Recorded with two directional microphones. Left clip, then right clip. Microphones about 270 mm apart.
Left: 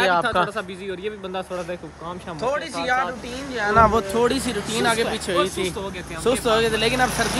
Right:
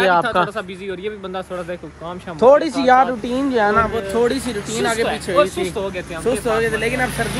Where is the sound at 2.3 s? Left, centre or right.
Centre.